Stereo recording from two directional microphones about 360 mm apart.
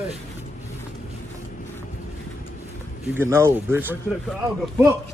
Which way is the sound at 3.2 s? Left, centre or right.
Centre.